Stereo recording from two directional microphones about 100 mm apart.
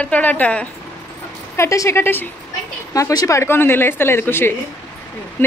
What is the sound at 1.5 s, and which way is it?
Speech, 30° left (ahead or behind).